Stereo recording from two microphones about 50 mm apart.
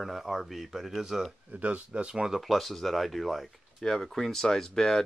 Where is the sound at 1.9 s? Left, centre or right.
Centre.